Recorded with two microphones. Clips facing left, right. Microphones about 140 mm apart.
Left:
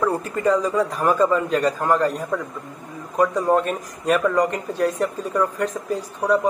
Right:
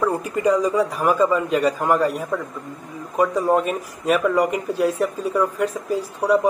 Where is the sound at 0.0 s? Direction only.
10° right (ahead or behind).